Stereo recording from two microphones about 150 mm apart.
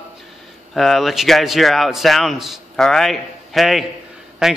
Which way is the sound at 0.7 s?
Centre (ahead or behind).